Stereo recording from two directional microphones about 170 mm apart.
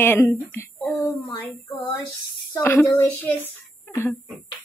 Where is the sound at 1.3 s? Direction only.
10° left (ahead or behind).